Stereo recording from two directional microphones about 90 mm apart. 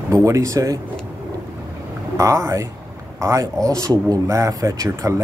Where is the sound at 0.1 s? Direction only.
35° right (ahead or behind).